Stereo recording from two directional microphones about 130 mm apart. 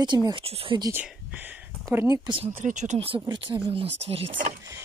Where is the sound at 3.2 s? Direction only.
40° right (ahead or behind).